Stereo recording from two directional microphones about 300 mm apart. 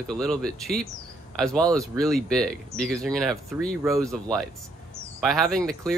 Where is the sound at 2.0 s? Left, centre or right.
Centre.